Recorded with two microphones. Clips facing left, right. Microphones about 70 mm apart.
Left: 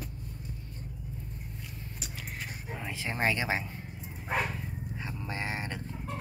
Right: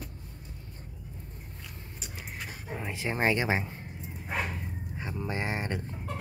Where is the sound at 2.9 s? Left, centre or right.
Right.